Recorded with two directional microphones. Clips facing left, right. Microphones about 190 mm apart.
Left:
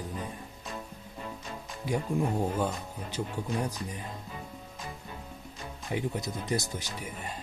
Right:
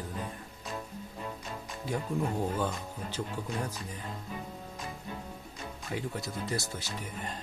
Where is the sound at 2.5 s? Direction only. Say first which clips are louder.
Left 2 dB; 10° left (ahead or behind).